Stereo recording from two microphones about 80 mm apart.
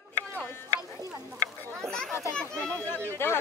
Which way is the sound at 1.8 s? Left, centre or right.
Centre.